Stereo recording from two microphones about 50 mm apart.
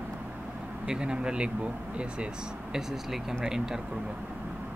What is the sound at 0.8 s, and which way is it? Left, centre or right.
Speech, centre.